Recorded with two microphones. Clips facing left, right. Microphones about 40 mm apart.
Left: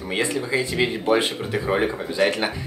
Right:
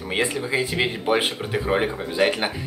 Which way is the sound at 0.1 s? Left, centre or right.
Centre.